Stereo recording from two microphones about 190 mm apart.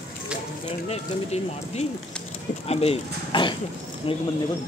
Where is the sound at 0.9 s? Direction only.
35° left (ahead or behind).